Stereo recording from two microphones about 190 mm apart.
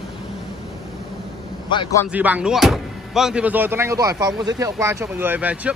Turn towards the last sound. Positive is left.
turn(degrees=-10)  # may be behind; listen again after turning